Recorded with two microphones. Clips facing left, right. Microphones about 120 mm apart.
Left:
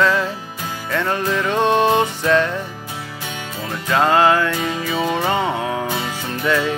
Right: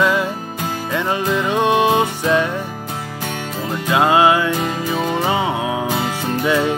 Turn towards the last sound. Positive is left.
turn(degrees=-20)  # may be behind; listen again after turning